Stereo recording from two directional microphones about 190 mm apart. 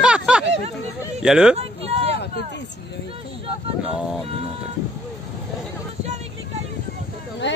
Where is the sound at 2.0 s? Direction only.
60° left (ahead or behind).